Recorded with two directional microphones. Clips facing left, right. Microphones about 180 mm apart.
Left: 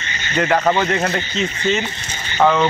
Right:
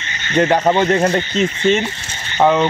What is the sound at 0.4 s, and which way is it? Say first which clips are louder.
Speech: right 3 dB; 25° right (ahead or behind).